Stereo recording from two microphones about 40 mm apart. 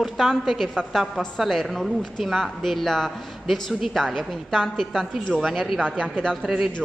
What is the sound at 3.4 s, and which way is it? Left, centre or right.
A woman's voice, centre.